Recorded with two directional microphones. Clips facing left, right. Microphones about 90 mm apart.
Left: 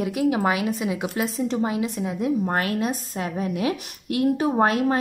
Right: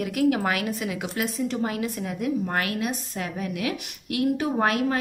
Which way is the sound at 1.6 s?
20° left (ahead or behind).